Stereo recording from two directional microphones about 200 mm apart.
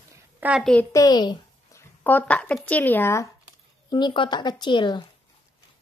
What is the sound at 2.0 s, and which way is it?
Speech, 10° left (ahead or behind).